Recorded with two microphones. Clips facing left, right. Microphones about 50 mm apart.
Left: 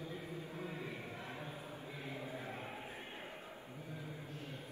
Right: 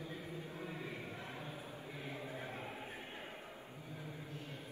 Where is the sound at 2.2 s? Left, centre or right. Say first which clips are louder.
Even; right.